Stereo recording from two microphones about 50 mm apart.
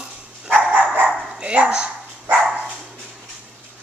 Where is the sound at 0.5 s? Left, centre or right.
Right.